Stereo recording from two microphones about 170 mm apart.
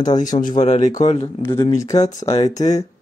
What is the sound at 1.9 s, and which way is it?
Speech, 40° left (ahead or behind).